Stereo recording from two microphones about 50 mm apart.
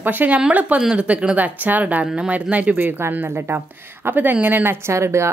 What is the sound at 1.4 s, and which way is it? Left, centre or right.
Speech, right.